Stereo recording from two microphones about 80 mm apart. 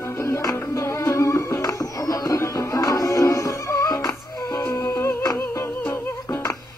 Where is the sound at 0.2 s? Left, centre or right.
Left.